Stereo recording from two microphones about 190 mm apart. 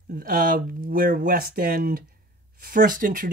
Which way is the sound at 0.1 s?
45° right (ahead or behind).